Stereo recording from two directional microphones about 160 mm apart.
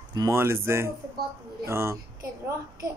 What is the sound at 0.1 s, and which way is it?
Speech, 20° right (ahead or behind).